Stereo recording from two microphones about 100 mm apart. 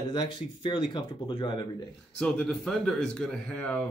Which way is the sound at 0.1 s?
45° left (ahead or behind).